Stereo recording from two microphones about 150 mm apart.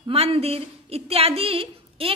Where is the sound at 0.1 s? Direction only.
40° right (ahead or behind).